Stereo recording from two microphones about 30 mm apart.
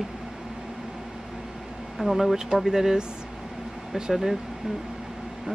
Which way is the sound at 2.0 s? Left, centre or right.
Right.